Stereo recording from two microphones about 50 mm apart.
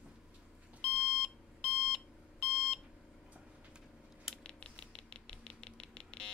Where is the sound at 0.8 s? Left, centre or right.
Centre.